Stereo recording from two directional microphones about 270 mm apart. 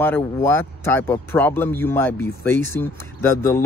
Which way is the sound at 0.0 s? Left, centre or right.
Centre.